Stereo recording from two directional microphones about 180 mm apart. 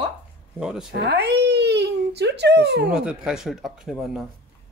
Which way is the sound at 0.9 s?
65° right (ahead or behind).